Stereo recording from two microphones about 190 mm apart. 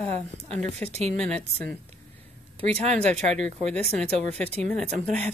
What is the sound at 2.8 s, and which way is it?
Speech, 35° right (ahead or behind).